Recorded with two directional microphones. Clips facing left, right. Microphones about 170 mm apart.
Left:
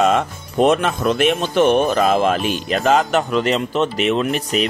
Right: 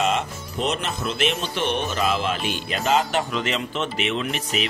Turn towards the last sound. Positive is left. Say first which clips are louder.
# left 7 dB
turn(degrees=40)  # may be behind; listen again after turning